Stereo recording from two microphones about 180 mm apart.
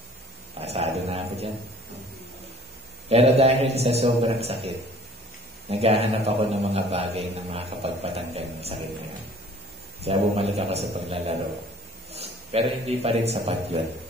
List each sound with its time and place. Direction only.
0.6 s dog: 35° right (ahead or behind)
3.1 s a man's voice: 35° right (ahead or behind)
5.7 s a man's voice: 35° right (ahead or behind)
10.0 s a man's voice: 35° right (ahead or behind)